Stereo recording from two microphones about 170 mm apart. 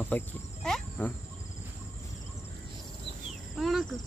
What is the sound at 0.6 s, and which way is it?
Cricket, 5° left (ahead or behind).